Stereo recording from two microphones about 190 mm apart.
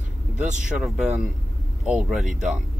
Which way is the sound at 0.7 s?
Centre (ahead or behind).